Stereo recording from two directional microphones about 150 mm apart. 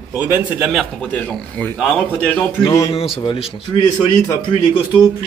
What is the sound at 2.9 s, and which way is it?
Speech, 40° left (ahead or behind).